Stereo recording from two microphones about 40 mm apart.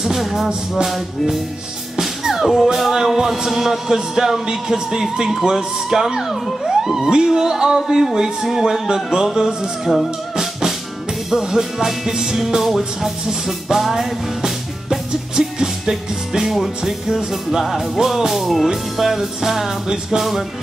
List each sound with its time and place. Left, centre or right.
0.0 s music: centre
0.8 s speech: centre
2.0 s music: centre
6.2 s speech: centre
7.0 s speech: centre
7.2 s music: centre